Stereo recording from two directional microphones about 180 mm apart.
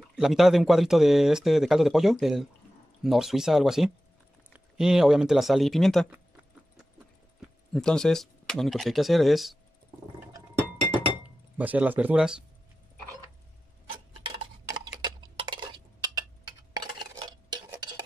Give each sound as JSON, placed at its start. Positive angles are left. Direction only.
{"t": 0.1, "sound": "speech", "side_deg": 0}
{"t": 7.7, "sound": "speech", "side_deg": 5}
{"t": 11.5, "sound": "speech", "side_deg": -10}
{"t": 15.0, "sound": "a sound", "side_deg": -25}